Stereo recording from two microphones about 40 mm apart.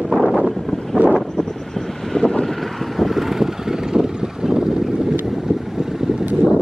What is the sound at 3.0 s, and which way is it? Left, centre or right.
Vehicle, centre.